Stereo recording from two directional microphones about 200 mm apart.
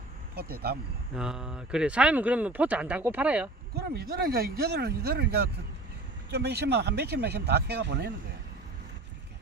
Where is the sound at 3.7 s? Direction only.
55° right (ahead or behind).